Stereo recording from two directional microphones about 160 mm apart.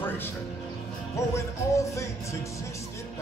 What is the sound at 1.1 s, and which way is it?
Music, 20° left (ahead or behind).